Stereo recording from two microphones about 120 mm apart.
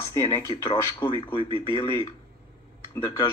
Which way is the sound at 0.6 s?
45° left (ahead or behind).